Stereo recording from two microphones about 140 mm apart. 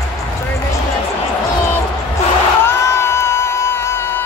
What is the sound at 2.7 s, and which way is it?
Music, 20° left (ahead or behind).